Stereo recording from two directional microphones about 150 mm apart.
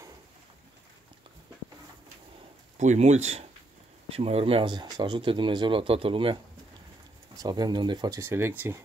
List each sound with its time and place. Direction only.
2.8 s speech: 50° right (ahead or behind); by 6.3 s 35° right (ahead or behind)
7.3 s speech: 25° right (ahead or behind)
8.2 s speech: 15° right (ahead or behind)